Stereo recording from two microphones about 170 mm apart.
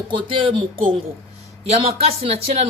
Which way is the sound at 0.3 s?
30° right (ahead or behind).